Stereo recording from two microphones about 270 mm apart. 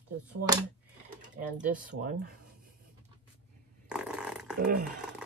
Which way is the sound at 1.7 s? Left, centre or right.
Right.